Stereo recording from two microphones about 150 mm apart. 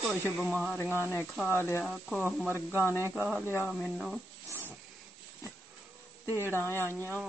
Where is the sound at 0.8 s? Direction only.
15° left (ahead or behind).